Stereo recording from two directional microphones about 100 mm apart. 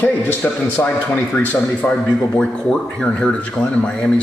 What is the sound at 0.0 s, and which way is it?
A man's voice, 20° left (ahead or behind).